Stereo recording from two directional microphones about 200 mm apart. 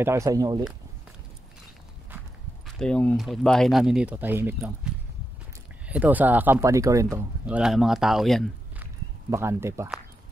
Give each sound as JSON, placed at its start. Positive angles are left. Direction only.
{"t": 0.0, "sound": "speech", "side_deg": -15}
{"t": 2.6, "sound": "speech", "side_deg": 5}
{"t": 9.3, "sound": "speech", "side_deg": -15}